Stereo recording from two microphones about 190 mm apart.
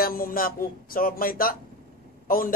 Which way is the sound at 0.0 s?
50° left (ahead or behind).